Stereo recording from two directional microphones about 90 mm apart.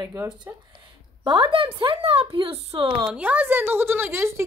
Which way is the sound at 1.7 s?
85° right.